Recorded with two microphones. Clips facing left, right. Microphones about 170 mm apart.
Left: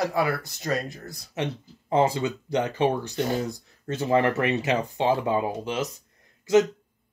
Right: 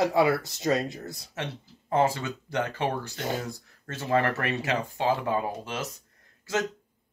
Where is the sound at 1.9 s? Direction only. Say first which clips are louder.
Left 3 dB; 15° left (ahead or behind).